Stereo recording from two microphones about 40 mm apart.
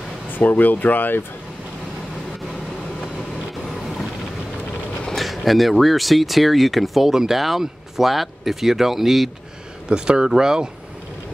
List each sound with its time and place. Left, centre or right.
0.3 s speech: left
5.1 s speech: centre
9.8 s speech: right